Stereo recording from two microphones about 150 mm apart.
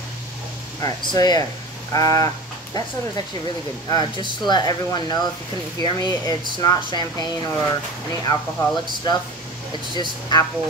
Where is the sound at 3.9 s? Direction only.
30° left (ahead or behind).